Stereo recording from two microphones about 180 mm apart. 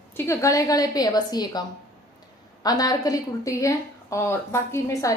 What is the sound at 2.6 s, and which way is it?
A woman's voice, 20° left (ahead or behind).